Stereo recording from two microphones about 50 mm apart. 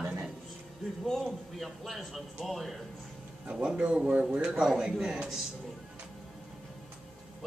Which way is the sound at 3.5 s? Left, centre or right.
Centre.